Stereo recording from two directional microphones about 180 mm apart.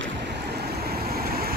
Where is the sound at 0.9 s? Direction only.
60° right (ahead or behind).